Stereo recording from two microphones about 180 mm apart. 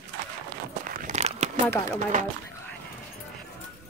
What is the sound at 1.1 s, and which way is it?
Crumpling, 35° right (ahead or behind).